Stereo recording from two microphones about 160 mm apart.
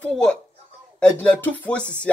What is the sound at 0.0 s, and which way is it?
Speech, 5° left (ahead or behind).